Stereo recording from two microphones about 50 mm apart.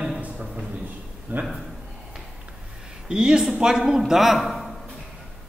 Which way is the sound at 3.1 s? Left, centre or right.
Centre.